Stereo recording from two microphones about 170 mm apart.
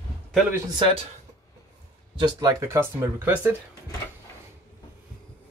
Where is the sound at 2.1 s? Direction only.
25° right (ahead or behind).